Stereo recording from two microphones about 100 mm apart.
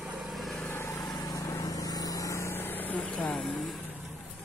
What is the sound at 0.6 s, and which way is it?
Vehicle, 25° left (ahead or behind).